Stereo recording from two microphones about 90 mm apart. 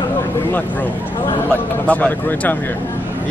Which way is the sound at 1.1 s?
60° left (ahead or behind).